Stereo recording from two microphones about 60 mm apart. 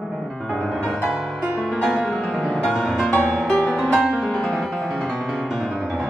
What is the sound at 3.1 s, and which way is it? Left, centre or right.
Music, left.